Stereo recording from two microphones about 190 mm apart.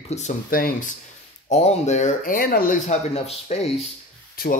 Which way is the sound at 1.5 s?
35° left (ahead or behind).